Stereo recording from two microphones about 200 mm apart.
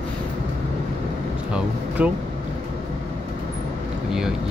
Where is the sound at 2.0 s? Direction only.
5° right (ahead or behind).